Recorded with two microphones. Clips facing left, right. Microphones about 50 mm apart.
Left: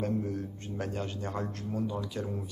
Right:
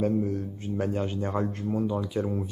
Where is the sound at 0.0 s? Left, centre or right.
Centre.